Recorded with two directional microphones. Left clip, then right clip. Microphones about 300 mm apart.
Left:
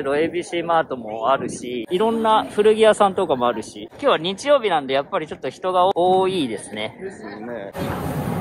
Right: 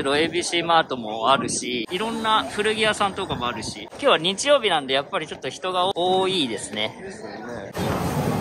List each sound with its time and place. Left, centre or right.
0.0 s speech: centre
4.0 s speech: centre